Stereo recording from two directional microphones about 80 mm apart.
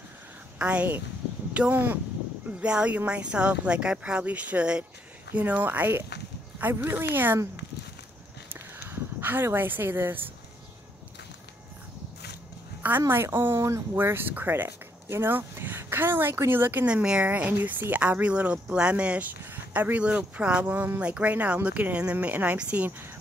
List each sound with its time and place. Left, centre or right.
0.6 s speech: centre
8.5 s a sound: right
13.1 s speech: right
16.8 s speech: centre